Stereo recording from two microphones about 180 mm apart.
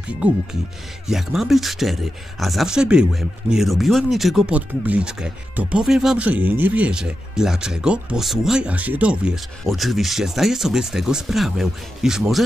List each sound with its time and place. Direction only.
1.0 s speech: centre (ahead or behind)